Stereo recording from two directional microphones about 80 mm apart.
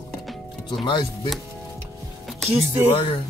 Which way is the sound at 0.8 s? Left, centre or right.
Left.